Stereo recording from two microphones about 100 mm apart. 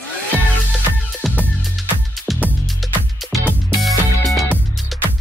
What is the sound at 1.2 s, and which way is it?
Music, centre (ahead or behind).